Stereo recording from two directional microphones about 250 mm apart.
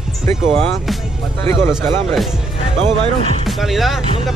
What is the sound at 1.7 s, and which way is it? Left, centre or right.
Speech, centre.